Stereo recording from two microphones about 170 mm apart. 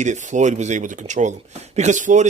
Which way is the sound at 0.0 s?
45° right (ahead or behind).